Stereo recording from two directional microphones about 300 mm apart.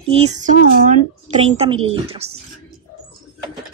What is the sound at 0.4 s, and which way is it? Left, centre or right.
Speech, right.